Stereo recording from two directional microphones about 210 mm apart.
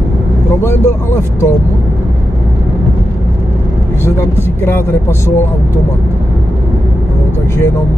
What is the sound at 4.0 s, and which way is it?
Speech, 10° left (ahead or behind).